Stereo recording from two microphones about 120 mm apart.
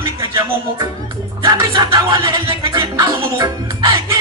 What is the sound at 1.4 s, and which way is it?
Music, 25° right (ahead or behind).